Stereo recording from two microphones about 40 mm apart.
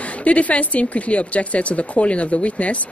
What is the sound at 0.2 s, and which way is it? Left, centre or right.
Speech, left.